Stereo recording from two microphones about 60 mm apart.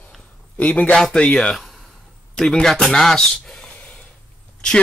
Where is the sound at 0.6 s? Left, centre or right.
Left.